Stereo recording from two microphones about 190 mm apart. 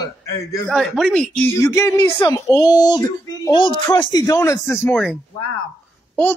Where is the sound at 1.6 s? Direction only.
15° left (ahead or behind).